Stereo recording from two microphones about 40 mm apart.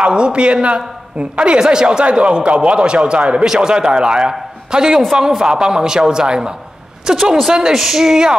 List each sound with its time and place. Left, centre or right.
0.0 s a man's voice: right
3.4 s a man's voice: centre